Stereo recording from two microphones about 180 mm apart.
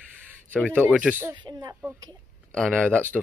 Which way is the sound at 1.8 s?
10° right (ahead or behind).